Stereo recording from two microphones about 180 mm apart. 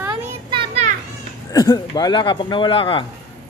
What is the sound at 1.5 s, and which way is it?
Speech, 20° left (ahead or behind).